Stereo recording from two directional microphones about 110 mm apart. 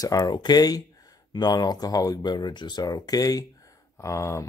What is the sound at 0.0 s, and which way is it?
Speech, 35° left (ahead or behind).